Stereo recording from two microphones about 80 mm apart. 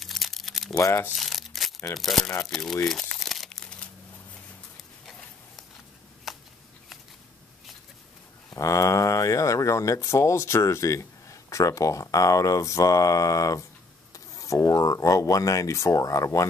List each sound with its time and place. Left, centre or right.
0.0 s crumpling: centre
0.7 s speech: left
1.1 s crumpling: centre
2.0 s speech: centre
2.9 s crumpling: centre
6.3 s a sound: centre
8.5 s speech: left